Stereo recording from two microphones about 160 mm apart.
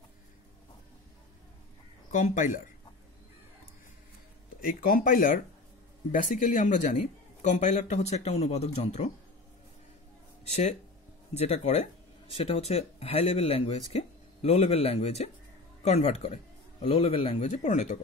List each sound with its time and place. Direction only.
2.0 s speech: 55° left (ahead or behind)
4.6 s a man's voice: 65° left (ahead or behind); by 9.1 s 45° left (ahead or behind)
10.4 s a man's voice: 40° left (ahead or behind)